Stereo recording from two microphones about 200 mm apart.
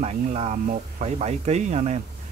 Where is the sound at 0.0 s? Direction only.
35° right (ahead or behind).